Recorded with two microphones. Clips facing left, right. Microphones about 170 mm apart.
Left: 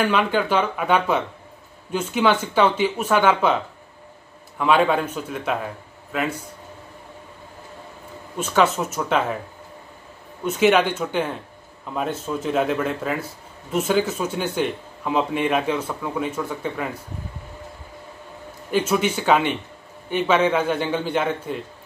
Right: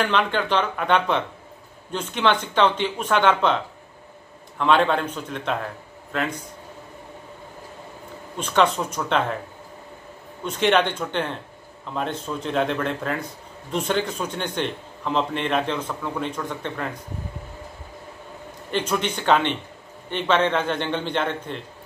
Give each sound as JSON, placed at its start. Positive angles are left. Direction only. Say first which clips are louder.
{"t": 0.0, "sound": "a man's voice", "louder": "left 2 dB", "side_deg": 10}
{"t": 8.4, "sound": "a man's voice", "louder": "left 1 dB", "side_deg": 5}
{"t": 10.4, "sound": "a man's voice", "louder": "left 3 dB", "side_deg": 5}
{"t": 18.7, "sound": "a man's voice", "louder": "left 4 dB", "side_deg": 5}